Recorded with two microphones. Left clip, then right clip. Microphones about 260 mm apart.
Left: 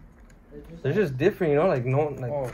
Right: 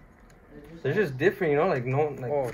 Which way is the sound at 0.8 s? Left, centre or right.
Left.